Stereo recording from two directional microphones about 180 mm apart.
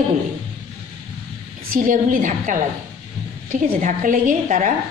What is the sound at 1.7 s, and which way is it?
A woman's voice, 45° right (ahead or behind).